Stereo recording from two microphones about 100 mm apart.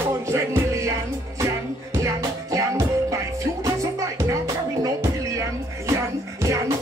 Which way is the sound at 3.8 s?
35° right (ahead or behind).